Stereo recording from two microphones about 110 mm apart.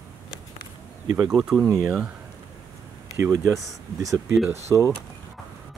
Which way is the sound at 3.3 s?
30° right (ahead or behind).